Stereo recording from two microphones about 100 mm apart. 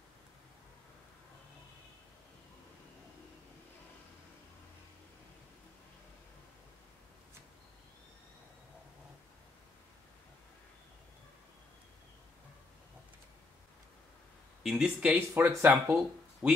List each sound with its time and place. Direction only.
14.6 s speech: 5° right (ahead or behind)
15.0 s speech: 20° right (ahead or behind)
16.4 s speech: 5° right (ahead or behind)